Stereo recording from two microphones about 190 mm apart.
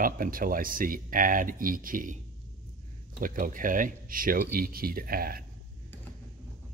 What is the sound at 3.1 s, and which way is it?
Speech, 45° right (ahead or behind).